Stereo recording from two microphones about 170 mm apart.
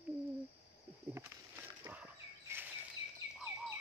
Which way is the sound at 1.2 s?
10° right (ahead or behind).